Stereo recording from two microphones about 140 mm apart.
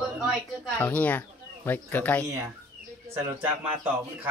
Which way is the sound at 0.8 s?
10° left (ahead or behind).